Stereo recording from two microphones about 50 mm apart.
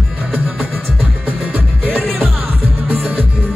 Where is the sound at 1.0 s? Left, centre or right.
Right.